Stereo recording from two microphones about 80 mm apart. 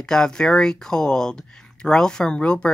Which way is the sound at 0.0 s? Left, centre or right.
Centre.